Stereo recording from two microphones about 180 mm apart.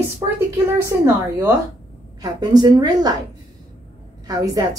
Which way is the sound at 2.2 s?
20° right (ahead or behind).